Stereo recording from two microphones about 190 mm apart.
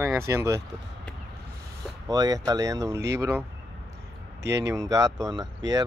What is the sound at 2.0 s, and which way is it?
Speech, 20° right (ahead or behind).